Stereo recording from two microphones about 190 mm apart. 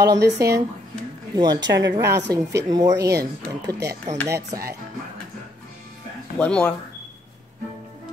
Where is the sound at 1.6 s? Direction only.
70° right (ahead or behind).